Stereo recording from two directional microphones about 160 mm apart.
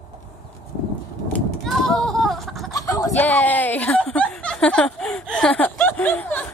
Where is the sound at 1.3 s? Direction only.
Centre (ahead or behind).